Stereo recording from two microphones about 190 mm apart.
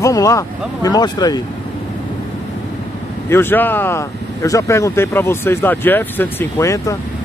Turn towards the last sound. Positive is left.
turn(degrees=15)  # may be behind; listen again after turning